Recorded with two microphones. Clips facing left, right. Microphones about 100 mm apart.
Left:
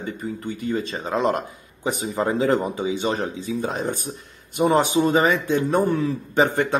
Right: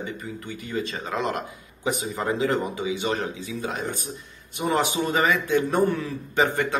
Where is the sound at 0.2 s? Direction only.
35° left (ahead or behind).